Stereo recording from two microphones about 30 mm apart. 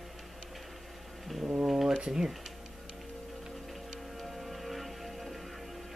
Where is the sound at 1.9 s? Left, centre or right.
Right.